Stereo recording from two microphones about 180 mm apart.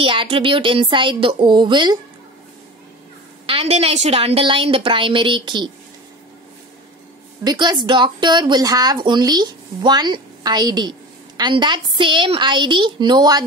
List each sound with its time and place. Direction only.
0.0 s speech: 30° right (ahead or behind)
3.4 s a woman's voice: 30° right (ahead or behind)
7.4 s speech: 25° right (ahead or behind)